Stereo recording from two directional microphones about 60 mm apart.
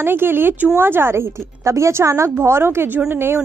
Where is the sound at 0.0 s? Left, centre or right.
Right.